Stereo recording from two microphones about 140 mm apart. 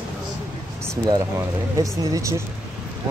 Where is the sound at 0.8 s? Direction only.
25° right (ahead or behind).